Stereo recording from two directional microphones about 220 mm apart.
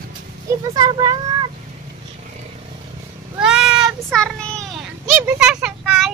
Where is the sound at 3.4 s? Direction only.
5° right (ahead or behind).